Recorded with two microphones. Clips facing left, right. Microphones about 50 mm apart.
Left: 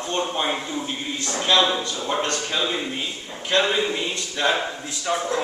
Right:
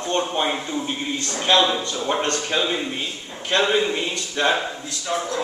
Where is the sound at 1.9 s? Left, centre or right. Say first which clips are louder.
Right 2 dB; centre.